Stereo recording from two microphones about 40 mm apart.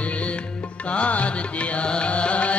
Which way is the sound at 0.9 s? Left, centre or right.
Left.